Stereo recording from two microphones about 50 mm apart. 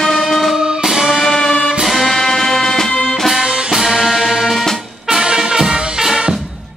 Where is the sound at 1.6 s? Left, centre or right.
Centre.